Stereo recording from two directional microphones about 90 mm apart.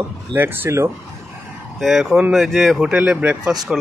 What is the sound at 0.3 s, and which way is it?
Speech, 25° right (ahead or behind).